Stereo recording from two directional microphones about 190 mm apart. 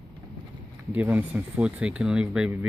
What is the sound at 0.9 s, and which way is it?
Speech, 10° right (ahead or behind).